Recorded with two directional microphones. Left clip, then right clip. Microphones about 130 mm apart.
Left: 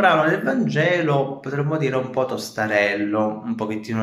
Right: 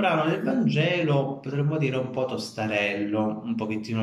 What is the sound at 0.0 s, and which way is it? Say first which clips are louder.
Speech: left 7 dB; 15° right (ahead or behind).